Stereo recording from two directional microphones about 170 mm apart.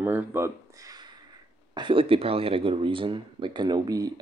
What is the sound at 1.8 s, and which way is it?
Speech, 30° right (ahead or behind).